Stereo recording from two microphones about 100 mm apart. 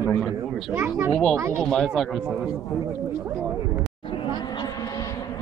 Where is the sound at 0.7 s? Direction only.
25° right (ahead or behind).